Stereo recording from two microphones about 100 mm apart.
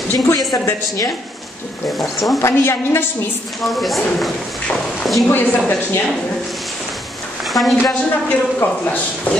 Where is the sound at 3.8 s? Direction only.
Centre (ahead or behind).